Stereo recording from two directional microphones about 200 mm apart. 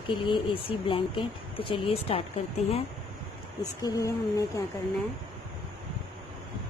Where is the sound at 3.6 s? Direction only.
15° left (ahead or behind).